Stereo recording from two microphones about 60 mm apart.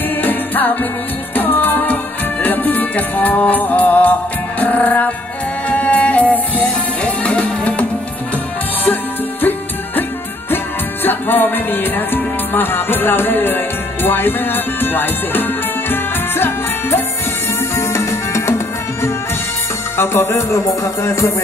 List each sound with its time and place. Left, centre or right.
0.2 s music: left
9.4 s music: left
11.1 s music: left
17.7 s music: left
20.0 s music: left